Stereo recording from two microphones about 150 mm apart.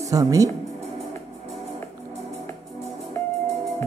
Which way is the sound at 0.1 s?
20° right (ahead or behind).